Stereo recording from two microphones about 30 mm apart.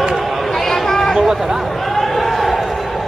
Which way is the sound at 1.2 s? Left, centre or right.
Centre.